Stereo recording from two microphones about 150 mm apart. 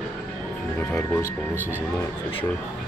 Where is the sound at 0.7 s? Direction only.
15° left (ahead or behind).